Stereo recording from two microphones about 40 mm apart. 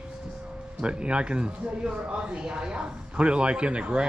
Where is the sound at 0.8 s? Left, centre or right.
Right.